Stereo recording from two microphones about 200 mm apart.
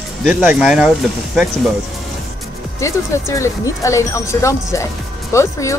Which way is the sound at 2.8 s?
15° left (ahead or behind).